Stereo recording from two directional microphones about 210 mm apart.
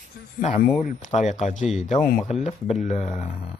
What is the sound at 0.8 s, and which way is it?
Speech, 35° left (ahead or behind).